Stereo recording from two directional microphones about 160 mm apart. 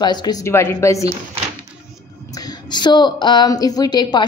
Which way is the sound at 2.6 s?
30° left (ahead or behind).